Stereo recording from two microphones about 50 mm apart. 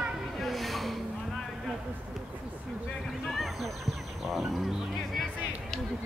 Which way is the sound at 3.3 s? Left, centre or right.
Centre.